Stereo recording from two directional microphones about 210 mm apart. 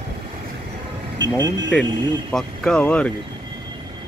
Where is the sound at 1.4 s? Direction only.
20° right (ahead or behind).